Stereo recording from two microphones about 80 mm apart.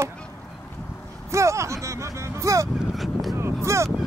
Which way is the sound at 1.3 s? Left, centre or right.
Right.